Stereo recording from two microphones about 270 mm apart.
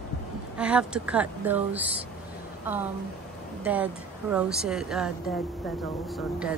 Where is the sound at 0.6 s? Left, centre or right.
Centre.